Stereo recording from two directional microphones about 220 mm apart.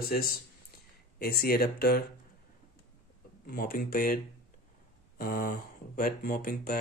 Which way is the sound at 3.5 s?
40° left (ahead or behind).